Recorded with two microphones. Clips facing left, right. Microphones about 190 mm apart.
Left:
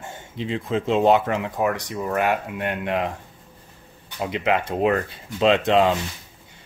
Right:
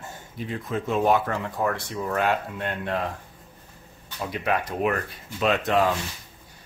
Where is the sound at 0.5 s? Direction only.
25° left (ahead or behind).